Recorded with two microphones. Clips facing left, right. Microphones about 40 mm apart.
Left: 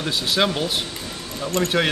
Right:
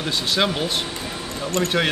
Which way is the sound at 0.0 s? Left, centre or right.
Centre.